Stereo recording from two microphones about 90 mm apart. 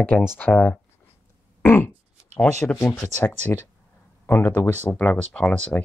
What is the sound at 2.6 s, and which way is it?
Speech, 20° left (ahead or behind).